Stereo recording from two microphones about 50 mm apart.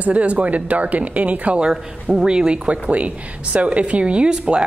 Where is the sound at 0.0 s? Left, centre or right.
Right.